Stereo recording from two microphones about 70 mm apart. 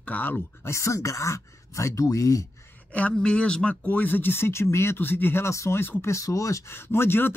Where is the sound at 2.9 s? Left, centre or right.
Left.